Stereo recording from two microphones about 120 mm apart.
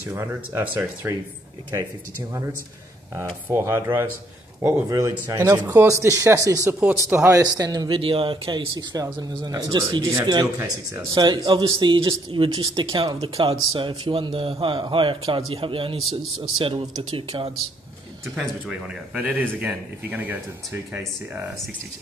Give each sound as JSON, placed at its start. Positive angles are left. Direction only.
{"t": 0.1, "sound": "speech", "side_deg": -20}
{"t": 3.4, "sound": "speech", "side_deg": -20}
{"t": 6.8, "sound": "a man's voice", "side_deg": -15}
{"t": 7.2, "sound": "speech", "side_deg": -25}
{"t": 8.0, "sound": "speech", "side_deg": -50}
{"t": 18.3, "sound": "a man's voice", "side_deg": -10}